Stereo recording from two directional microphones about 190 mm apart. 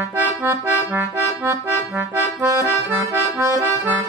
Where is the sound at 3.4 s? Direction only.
15° right (ahead or behind).